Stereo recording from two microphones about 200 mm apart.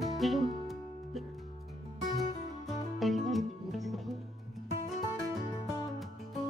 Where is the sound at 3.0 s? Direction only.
Centre (ahead or behind).